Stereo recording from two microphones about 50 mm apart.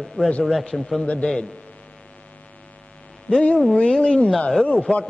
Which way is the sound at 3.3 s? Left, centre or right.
Centre.